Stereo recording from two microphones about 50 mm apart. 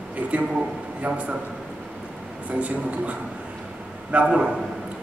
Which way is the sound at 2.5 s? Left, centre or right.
Right.